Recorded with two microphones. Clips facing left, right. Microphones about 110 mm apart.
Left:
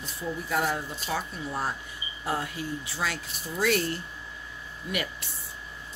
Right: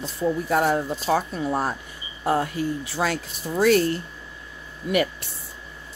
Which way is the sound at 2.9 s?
45° right (ahead or behind).